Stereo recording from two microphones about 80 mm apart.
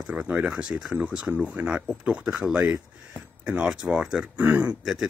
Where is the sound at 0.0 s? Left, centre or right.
Centre.